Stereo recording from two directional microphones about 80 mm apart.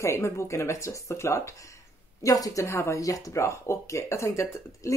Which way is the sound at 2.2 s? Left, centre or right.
Left.